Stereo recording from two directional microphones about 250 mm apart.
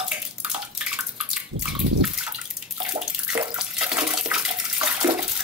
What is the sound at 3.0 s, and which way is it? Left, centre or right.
Bathtub, centre.